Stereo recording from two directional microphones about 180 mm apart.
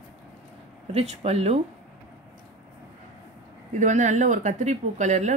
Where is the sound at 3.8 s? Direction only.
40° right (ahead or behind).